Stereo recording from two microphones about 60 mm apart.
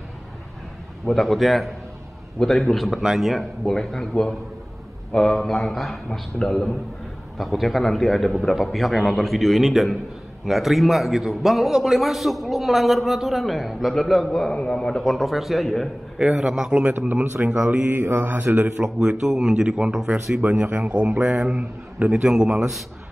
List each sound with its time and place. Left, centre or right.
1.0 s a man's voice: centre
14.5 s a man's voice: centre
16.3 s a man's voice: centre
17.1 s speech: right
17.5 s speech: right
18.9 s a man's voice: centre
20.6 s a man's voice: right